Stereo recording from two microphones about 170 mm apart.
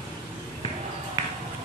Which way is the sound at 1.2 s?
20° right (ahead or behind).